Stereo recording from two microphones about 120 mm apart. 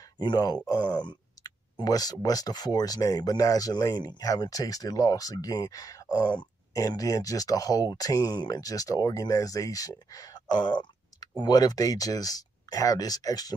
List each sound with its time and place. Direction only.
0.2 s speech: 35° left (ahead or behind)